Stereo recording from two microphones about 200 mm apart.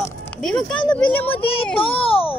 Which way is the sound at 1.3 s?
25° left (ahead or behind).